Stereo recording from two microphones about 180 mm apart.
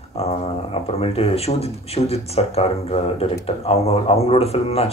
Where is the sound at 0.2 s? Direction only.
35° left (ahead or behind).